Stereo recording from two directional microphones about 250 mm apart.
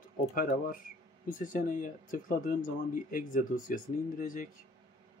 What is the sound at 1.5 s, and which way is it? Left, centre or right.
Speech, left.